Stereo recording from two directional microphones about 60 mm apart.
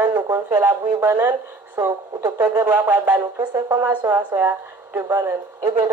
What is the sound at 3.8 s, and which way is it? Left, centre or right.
A woman's voice, right.